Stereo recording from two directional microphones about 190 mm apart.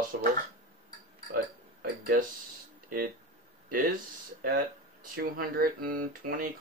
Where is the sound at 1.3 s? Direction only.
50° right (ahead or behind).